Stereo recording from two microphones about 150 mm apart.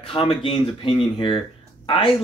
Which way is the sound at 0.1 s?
35° left (ahead or behind).